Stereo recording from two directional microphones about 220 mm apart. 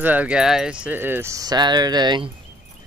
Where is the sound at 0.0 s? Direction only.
5° right (ahead or behind).